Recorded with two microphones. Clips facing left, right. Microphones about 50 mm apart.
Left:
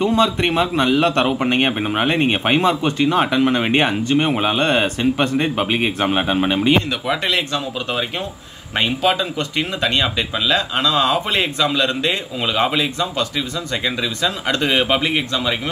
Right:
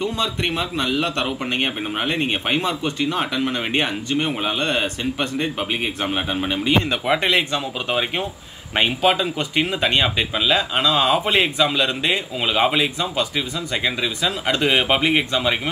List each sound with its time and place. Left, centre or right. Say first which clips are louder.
0.4 s speech: left 6 dB; left
6.9 s speech: right 1 dB; centre